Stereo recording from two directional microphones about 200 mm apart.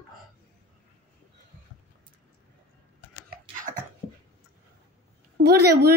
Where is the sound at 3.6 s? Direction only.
40° right (ahead or behind).